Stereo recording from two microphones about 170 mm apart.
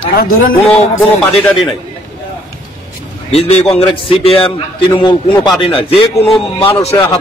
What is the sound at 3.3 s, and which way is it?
A man's voice, 35° left (ahead or behind).